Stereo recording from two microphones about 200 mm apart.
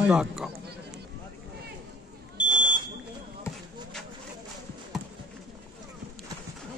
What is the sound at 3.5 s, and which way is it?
Basketball bounce, 15° left (ahead or behind).